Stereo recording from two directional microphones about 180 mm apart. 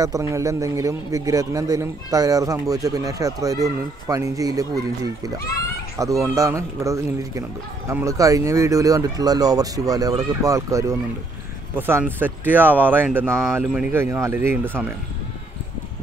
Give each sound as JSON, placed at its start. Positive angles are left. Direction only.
{"t": 0.0, "sound": "speech", "side_deg": -15}